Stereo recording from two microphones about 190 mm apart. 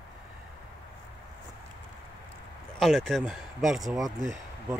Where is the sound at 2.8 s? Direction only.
Centre (ahead or behind).